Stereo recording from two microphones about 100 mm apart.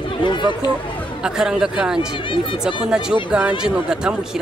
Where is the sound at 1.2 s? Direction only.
5° right (ahead or behind).